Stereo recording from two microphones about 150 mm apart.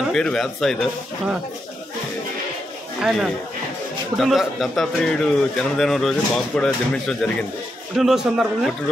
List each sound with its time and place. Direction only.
0.1 s speech: 5° left (ahead or behind)
3.0 s speech: centre (ahead or behind)